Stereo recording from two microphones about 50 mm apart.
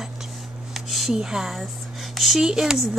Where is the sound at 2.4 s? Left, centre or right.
Centre.